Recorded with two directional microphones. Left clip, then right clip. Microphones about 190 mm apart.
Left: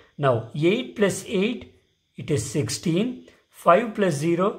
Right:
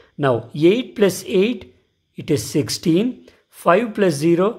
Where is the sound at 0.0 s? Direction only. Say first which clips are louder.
Right 3 dB; 40° right (ahead or behind).